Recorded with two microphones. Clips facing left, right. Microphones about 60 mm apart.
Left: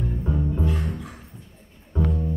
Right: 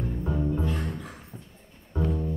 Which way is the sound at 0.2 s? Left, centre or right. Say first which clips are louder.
Left 1 dB; centre.